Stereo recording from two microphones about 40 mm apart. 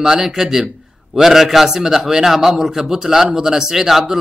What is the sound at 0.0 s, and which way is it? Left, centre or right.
A man's voice, centre.